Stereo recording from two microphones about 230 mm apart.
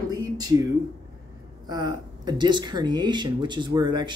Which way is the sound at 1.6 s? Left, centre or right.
Centre.